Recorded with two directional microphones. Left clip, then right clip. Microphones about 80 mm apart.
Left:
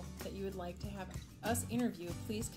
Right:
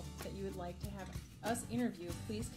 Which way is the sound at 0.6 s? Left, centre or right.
Left.